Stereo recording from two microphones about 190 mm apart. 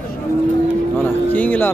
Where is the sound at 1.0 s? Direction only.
10° left (ahead or behind).